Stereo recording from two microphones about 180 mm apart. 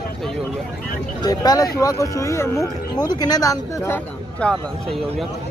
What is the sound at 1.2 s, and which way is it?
Speech, 20° left (ahead or behind).